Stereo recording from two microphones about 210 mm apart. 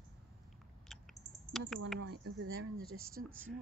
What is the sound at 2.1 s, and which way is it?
Speech, 50° right (ahead or behind).